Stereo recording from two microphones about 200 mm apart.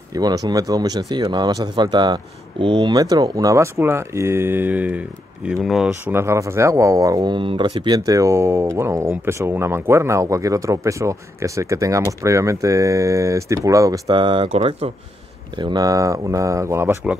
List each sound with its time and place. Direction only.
0.1 s speech: 20° right (ahead or behind); by 6.1 s centre (ahead or behind)
6.1 s speech: 15° right (ahead or behind); by 14.9 s 30° right (ahead or behind)
15.6 s speech: 20° right (ahead or behind)